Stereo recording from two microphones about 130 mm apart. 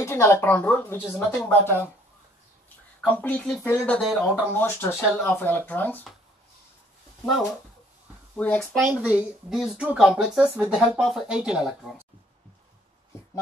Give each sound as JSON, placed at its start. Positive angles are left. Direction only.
{"t": 0.0, "sound": "speech", "side_deg": 20}
{"t": 3.1, "sound": "speech", "side_deg": 10}
{"t": 4.0, "sound": "speech", "side_deg": 0}
{"t": 4.6, "sound": "speech", "side_deg": 15}
{"t": 8.4, "sound": "speech", "side_deg": 5}
{"t": 8.8, "sound": "speech", "side_deg": -10}